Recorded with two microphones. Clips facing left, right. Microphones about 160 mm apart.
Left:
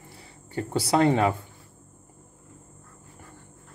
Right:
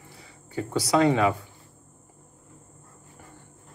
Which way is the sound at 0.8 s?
30° left (ahead or behind).